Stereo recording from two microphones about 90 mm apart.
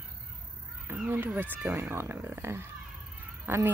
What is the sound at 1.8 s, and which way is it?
Speech, 25° right (ahead or behind).